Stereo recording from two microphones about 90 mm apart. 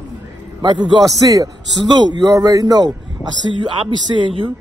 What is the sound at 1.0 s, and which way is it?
A man's voice, 40° right (ahead or behind).